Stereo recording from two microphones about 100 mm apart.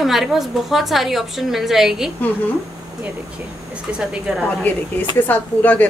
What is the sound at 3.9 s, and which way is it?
Speech, 10° right (ahead or behind).